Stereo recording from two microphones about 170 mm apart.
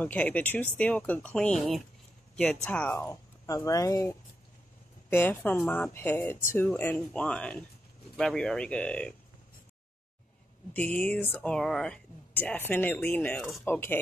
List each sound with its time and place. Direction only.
0.0 s speech: 10° left (ahead or behind)
10.7 s speech: 10° left (ahead or behind)